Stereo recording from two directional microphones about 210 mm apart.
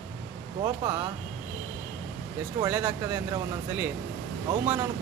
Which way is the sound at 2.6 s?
10° right (ahead or behind).